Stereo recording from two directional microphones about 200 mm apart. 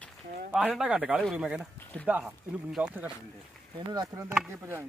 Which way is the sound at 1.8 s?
10° left (ahead or behind).